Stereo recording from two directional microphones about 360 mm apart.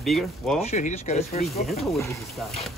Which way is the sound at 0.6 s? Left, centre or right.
Centre.